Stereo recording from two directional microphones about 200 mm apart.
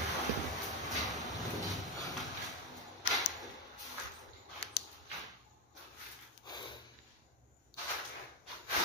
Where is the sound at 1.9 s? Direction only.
20° left (ahead or behind).